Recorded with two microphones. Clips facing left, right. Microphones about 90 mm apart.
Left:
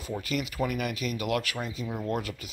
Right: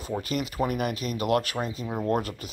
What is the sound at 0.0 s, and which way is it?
Speech, 30° right (ahead or behind).